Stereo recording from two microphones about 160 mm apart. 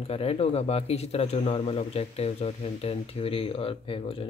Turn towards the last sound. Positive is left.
turn(degrees=35)  # may be behind; listen again after turning